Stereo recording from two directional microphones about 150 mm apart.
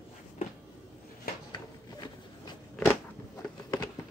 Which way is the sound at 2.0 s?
30° left (ahead or behind).